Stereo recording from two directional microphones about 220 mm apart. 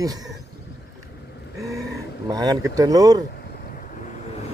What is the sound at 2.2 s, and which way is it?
Speech, 15° right (ahead or behind).